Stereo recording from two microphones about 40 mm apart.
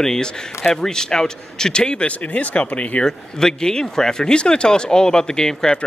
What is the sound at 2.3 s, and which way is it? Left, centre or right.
Speech, left.